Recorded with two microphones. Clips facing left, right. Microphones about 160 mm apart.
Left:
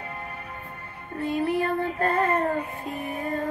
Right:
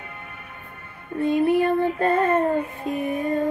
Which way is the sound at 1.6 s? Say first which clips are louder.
Right 5 dB; 25° right (ahead or behind).